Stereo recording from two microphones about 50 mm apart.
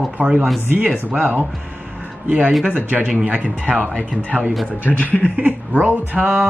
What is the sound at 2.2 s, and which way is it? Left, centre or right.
Speech, right.